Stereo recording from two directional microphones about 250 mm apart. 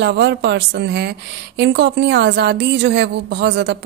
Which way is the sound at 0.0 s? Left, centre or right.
Right.